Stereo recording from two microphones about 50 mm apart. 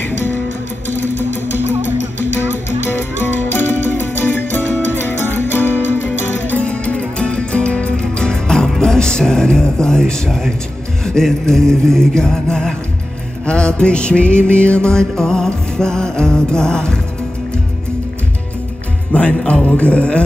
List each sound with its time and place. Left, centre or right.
0.0 s music: left
2.9 s music: left
6.6 s music: left
8.8 s a sound: centre
11.1 s music: centre
19.1 s music: left